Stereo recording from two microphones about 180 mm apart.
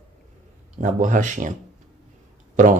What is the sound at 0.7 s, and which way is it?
Speech, 45° right (ahead or behind).